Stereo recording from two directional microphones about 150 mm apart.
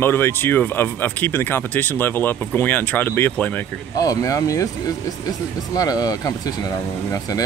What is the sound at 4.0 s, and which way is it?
Speech, 20° left (ahead or behind).